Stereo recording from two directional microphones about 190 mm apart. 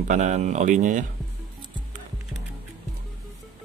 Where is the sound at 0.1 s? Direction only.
40° right (ahead or behind).